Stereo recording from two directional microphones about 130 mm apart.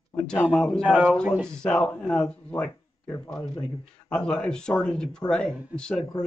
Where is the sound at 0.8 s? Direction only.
10° right (ahead or behind).